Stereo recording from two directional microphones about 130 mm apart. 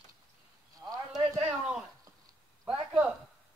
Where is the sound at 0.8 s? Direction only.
30° right (ahead or behind).